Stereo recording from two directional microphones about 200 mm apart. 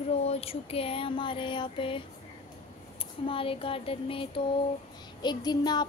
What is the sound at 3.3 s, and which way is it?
Speech, 25° left (ahead or behind).